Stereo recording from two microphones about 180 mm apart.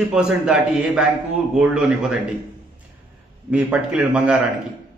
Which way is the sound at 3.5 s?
5° right (ahead or behind).